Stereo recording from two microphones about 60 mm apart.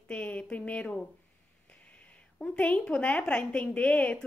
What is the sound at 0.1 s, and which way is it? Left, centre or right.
Speech, left.